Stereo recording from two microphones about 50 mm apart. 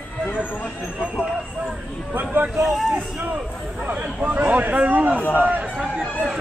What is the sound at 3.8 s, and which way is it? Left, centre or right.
Speech, right.